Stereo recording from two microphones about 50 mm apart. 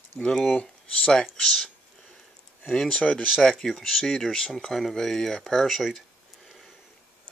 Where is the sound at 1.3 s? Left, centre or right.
Centre.